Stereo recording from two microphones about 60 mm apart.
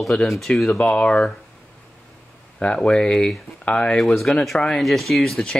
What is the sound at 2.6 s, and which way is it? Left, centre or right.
Speech, centre.